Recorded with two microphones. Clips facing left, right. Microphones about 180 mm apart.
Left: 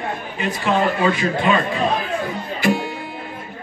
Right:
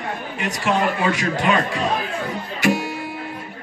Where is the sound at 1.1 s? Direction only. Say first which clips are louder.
Left 2 dB; 80° right.